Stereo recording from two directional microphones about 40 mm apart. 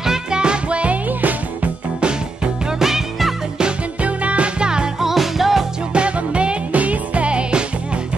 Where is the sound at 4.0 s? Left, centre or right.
Right.